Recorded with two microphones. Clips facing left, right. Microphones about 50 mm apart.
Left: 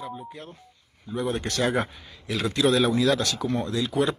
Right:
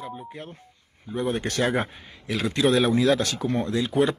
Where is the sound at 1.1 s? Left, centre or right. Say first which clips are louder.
Right 1 dB; centre.